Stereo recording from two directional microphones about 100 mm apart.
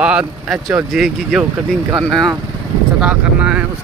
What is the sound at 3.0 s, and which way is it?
Speech, 10° right (ahead or behind).